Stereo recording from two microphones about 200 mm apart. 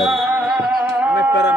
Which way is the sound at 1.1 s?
60° left (ahead or behind).